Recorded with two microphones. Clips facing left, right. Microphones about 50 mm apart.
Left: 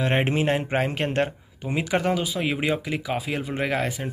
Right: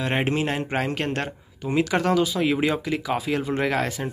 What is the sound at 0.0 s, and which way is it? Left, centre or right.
A man's voice, left.